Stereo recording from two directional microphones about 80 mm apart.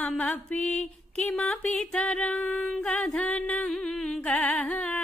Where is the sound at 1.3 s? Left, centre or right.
Centre.